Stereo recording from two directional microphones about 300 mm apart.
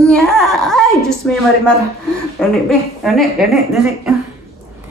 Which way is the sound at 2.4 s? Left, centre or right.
Centre.